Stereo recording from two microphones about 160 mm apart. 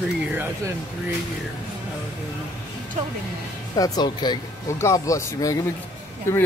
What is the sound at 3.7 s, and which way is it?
Speech, 25° left (ahead or behind).